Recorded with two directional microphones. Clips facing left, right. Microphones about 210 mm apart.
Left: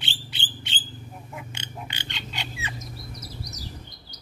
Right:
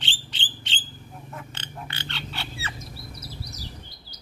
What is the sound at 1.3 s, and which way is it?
Pig, 10° left (ahead or behind).